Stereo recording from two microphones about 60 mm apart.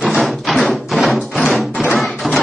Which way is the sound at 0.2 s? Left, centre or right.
Centre.